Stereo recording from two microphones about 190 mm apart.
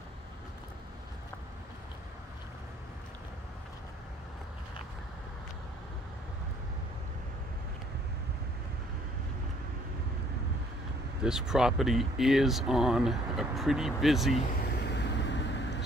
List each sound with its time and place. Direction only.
11.2 s speech: centre (ahead or behind)
14.8 s vehicle: 65° left (ahead or behind)